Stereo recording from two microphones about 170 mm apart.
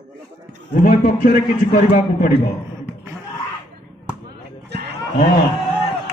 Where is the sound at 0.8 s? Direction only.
55° left (ahead or behind).